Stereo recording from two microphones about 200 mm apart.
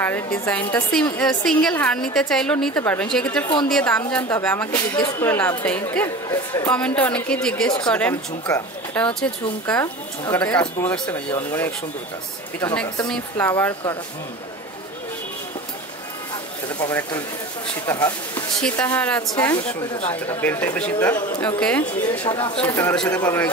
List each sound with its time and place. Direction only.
0.0 s a woman's voice: 5° left (ahead or behind)
16.6 s speech: 10° left (ahead or behind)
19.3 s speech: 20° left (ahead or behind)
22.2 s speech: 25° left (ahead or behind); by 23.5 s 10° left (ahead or behind)